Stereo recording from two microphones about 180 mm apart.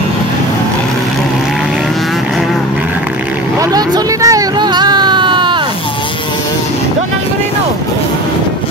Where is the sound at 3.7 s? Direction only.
20° right (ahead or behind).